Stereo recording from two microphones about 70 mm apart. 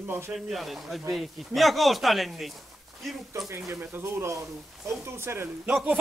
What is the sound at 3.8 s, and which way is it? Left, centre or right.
A man's voice, right.